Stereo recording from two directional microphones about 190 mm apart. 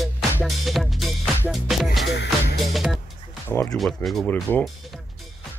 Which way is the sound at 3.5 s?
10° left (ahead or behind).